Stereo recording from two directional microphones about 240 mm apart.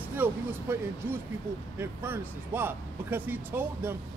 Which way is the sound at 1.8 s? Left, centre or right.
Centre.